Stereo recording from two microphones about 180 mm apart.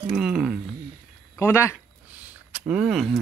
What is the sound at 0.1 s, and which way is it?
Speech, 5° right (ahead or behind).